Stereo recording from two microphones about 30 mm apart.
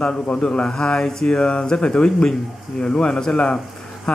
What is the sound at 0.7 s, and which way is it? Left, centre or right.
Speech, left.